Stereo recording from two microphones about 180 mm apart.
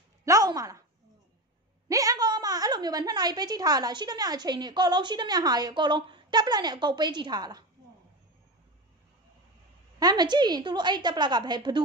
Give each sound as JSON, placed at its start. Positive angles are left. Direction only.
{"t": 0.2, "sound": "a sound", "side_deg": -20}
{"t": 1.9, "sound": "a woman's voice", "side_deg": -20}
{"t": 9.9, "sound": "a woman's voice", "side_deg": -20}